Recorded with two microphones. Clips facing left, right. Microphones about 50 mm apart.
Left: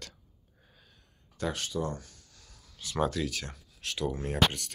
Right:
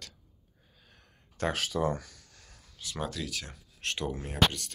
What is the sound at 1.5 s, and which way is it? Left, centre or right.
Speech, right.